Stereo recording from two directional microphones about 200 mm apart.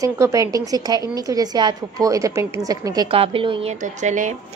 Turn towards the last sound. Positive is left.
turn(degrees=-40)  # may be behind; listen again after turning